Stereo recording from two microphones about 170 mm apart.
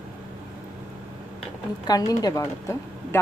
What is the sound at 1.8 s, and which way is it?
Speech, 20° left (ahead or behind).